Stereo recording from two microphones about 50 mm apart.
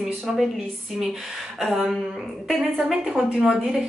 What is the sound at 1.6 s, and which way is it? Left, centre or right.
Speech, centre.